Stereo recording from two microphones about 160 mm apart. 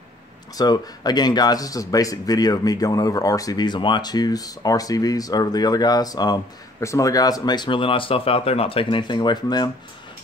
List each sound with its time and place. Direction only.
0.6 s speech: 25° left (ahead or behind)